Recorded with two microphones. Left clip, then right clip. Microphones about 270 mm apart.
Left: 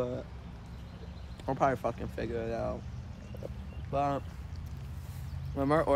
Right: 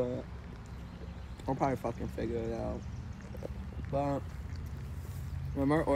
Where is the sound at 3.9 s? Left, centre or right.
Centre.